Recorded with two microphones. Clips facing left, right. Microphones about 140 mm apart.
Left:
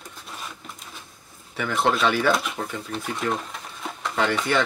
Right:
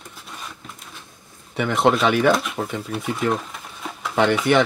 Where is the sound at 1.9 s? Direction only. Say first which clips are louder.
Right 4 dB; centre (ahead or behind).